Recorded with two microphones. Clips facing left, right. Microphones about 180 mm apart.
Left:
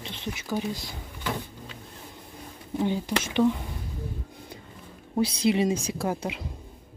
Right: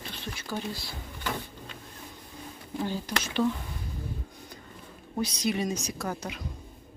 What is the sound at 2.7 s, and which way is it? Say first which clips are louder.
Speech: left 5 dB; 20° left (ahead or behind).